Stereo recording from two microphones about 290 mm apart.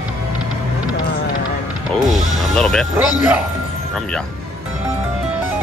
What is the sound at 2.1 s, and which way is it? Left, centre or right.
Music, centre.